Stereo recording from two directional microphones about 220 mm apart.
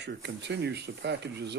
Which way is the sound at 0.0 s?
50° right (ahead or behind).